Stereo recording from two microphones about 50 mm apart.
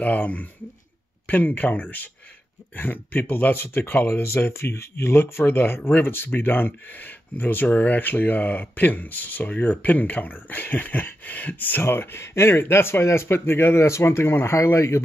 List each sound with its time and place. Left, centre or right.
0.0 s speech: left
3.5 s speech: left
4.1 s speech: left
5.6 s speech: left
11.8 s speech: left
13.7 s speech: left